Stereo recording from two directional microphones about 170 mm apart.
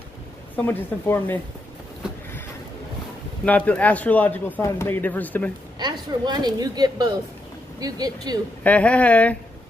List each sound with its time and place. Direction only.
0.6 s speech: 15° left (ahead or behind)
3.4 s speech: 10° left (ahead or behind)
5.8 s a woman's voice: 25° right (ahead or behind)
8.6 s speech: 5° left (ahead or behind)